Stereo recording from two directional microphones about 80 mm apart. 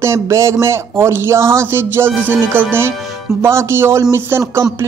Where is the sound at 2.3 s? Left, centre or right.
Right.